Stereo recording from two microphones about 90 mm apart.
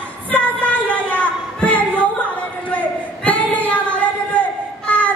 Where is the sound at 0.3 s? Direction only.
15° left (ahead or behind).